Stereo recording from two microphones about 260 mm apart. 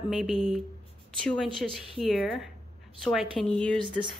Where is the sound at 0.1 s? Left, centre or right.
Centre.